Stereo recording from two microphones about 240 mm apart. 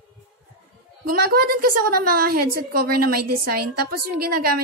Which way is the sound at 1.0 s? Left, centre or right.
Right.